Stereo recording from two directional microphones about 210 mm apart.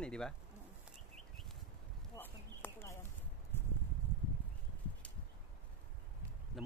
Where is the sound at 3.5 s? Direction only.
10° left (ahead or behind).